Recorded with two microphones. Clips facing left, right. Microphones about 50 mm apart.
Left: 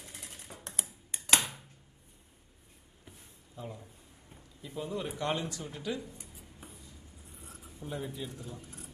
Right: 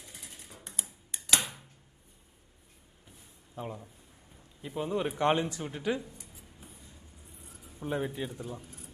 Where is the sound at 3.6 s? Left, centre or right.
Right.